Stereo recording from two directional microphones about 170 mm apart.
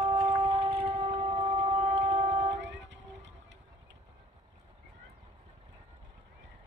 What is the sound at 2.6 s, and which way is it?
Vehicle, 90° right.